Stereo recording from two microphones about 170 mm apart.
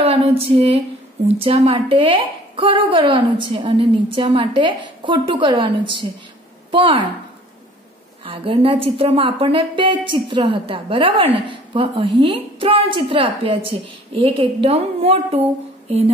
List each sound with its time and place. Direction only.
0.0 s a sound: 35° right (ahead or behind)
1.4 s a woman's voice: 35° right (ahead or behind)
8.3 s a woman's voice: 30° right (ahead or behind)